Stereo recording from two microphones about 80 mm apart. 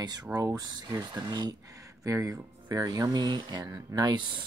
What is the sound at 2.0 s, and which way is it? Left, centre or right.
Speech, right.